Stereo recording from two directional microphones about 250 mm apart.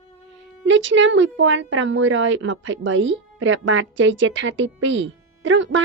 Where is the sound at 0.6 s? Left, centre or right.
Right.